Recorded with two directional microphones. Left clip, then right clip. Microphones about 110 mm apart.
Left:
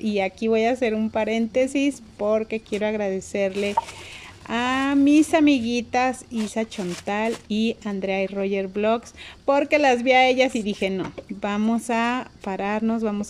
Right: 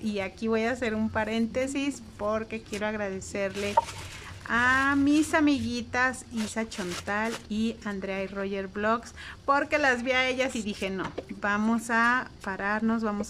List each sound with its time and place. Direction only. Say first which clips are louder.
0.0 s speech: left 8 dB; 25° left (ahead or behind)